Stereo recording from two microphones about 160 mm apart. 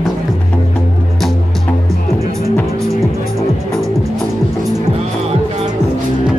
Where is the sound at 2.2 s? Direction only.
20° right (ahead or behind).